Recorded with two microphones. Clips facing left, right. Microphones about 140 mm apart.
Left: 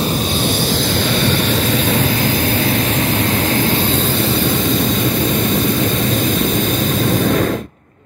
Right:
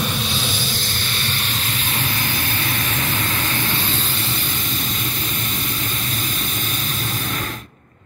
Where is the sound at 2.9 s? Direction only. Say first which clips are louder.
Left 8 dB; 40° left (ahead or behind).